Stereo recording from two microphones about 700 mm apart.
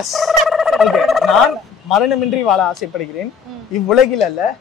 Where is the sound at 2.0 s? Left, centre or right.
Left.